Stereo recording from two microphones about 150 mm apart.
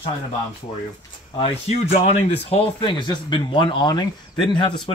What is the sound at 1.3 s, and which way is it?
Speech, 40° left (ahead or behind).